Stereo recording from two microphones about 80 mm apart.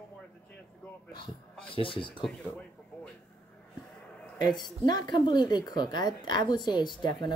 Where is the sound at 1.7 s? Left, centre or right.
Left.